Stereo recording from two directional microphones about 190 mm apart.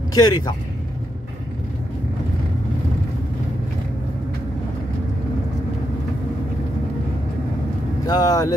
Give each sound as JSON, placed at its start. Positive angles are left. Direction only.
{"t": 0.1, "sound": "speech", "side_deg": 20}
{"t": 8.1, "sound": "speech", "side_deg": 20}